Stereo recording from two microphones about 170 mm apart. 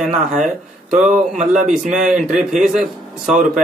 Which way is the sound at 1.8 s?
45° right (ahead or behind).